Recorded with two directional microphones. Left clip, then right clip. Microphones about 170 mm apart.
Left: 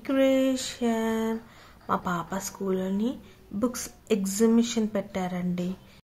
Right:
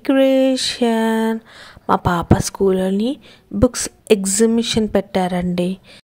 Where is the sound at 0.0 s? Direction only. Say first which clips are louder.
Right 9 dB; 50° right (ahead or behind).